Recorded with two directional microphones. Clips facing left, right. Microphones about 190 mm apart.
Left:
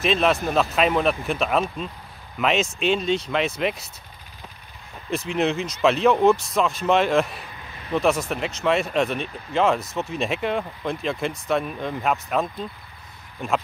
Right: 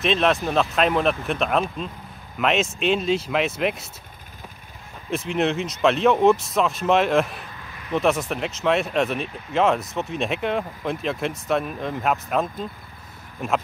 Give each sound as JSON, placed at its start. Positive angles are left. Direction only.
{"t": 0.0, "sound": "speech", "side_deg": 0}
{"t": 5.1, "sound": "speech", "side_deg": 0}